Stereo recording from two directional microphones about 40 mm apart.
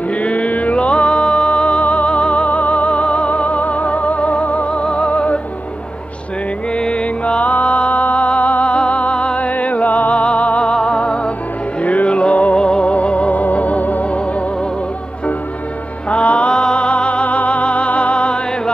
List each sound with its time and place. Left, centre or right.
0.1 s music: left
6.7 s music: left
10.6 s music: left
11.8 s music: left
12.5 s music: left
13.3 s music: left
16.1 s music: left